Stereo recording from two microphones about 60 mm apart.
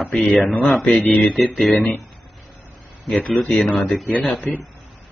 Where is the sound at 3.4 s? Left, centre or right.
Centre.